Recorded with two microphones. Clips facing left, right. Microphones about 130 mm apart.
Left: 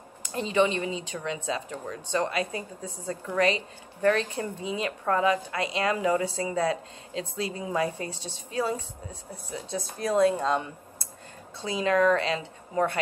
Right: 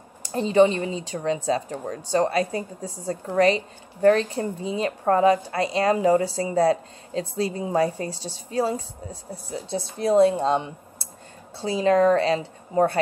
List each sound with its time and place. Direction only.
0.2 s a woman's voice: 35° right (ahead or behind)